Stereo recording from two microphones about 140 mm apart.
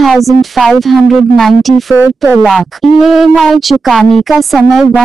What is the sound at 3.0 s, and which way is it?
A woman's voice, centre (ahead or behind).